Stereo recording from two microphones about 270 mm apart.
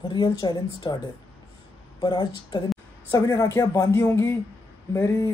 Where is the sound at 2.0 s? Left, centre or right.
Centre.